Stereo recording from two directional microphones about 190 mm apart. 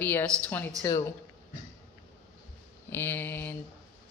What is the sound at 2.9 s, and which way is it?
Speech, 10° left (ahead or behind).